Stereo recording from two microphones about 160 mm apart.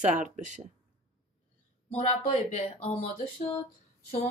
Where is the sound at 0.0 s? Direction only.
50° right (ahead or behind).